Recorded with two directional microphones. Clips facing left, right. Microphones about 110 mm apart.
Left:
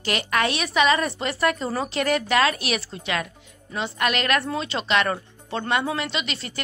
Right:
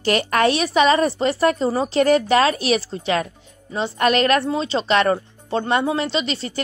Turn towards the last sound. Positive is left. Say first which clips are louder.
# right 7 dB
turn(degrees=-30)  # may be behind; listen again after turning